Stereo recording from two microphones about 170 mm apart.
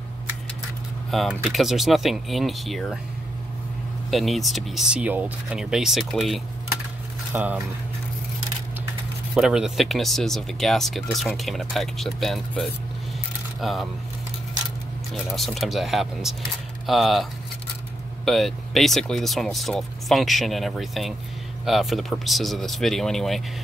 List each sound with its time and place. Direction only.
1.3 s speech: centre (ahead or behind)
4.1 s speech: centre (ahead or behind)
9.3 s speech: 5° right (ahead or behind)
15.3 s speech: centre (ahead or behind)